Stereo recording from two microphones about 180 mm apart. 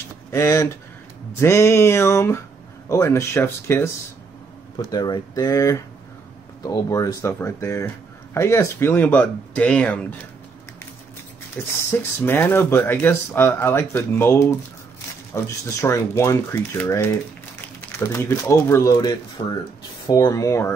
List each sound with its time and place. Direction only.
0.3 s speech: 15° left (ahead or behind)
4.9 s speech: 25° left (ahead or behind)
11.6 s speech: 15° left (ahead or behind)